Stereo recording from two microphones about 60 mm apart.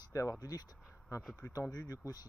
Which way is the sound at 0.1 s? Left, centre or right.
Left.